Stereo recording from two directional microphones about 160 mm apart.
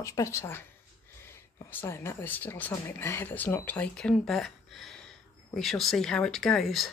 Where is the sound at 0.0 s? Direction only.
20° left (ahead or behind).